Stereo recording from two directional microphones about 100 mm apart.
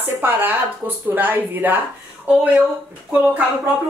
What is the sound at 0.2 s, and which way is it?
Speech, 20° right (ahead or behind).